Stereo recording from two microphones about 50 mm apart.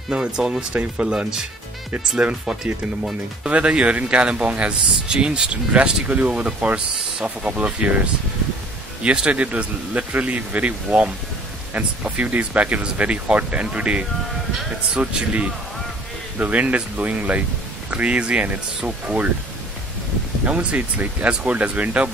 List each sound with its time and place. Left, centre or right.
0.1 s speech: centre
3.4 s speech: right
9.0 s speech: right
15.1 s speech: right
20.4 s speech: right